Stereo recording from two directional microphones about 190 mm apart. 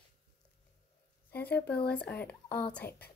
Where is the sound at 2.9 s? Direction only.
55° left (ahead or behind).